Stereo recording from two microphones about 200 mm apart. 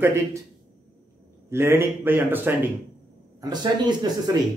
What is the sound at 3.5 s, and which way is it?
Speech, 20° right (ahead or behind).